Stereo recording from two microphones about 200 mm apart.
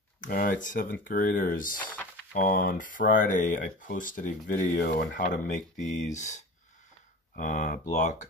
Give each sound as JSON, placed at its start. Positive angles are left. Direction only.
{"t": 0.2, "sound": "speech", "side_deg": 45}